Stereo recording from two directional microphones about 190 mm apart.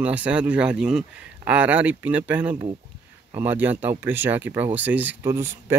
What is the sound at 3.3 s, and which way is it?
Speech, 10° right (ahead or behind).